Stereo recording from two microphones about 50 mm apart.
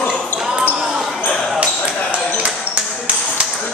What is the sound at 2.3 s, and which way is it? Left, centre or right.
Ping, right.